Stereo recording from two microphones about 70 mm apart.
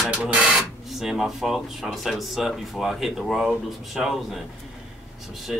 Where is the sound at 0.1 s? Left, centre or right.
Centre.